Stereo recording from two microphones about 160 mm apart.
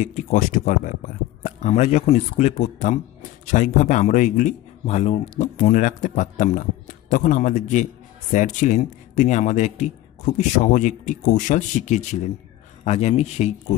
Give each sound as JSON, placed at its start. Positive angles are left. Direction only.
{"t": 0.0, "sound": "a man's voice", "side_deg": 50}